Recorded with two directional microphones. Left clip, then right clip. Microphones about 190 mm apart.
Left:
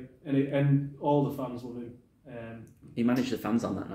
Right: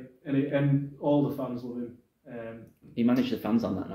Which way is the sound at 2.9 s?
20° left (ahead or behind).